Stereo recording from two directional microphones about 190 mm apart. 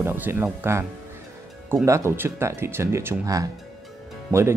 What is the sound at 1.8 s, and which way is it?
Speech, 15° right (ahead or behind).